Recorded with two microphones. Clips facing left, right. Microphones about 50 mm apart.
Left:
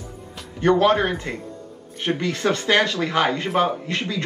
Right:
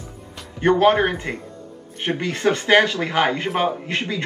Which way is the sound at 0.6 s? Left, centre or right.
Right.